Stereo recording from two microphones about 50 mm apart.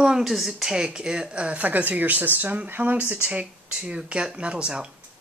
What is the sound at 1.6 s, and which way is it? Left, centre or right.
Speech, right.